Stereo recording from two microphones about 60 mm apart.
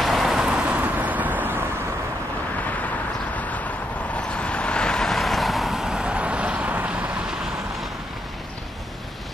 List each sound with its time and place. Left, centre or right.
0.0 s vehicle: centre
0.5 s vehicle: centre
3.3 s vehicle: left; by 7.1 s right